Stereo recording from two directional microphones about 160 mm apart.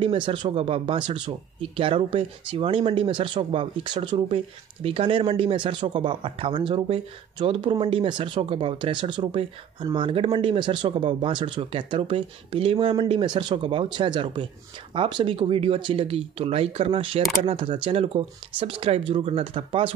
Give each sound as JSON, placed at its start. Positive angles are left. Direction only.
{"t": 0.0, "sound": "speech", "side_deg": -35}